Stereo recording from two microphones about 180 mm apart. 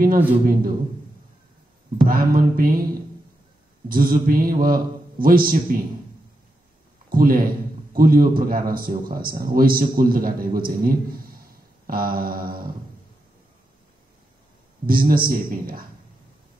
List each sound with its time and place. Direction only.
0.5 s a man's voice: 50° right (ahead or behind)
2.0 s a man's voice: 55° right (ahead or behind)
3.9 s a man's voice: 55° right (ahead or behind)
7.1 s a man's voice: 55° right (ahead or behind)
14.9 s a man's voice: 55° right (ahead or behind)